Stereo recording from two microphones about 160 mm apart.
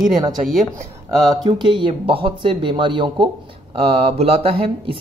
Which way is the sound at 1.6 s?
30° right (ahead or behind).